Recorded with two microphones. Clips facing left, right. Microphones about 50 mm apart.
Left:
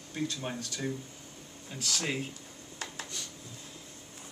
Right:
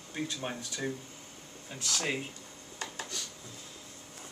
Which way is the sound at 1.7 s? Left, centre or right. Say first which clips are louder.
Even; centre.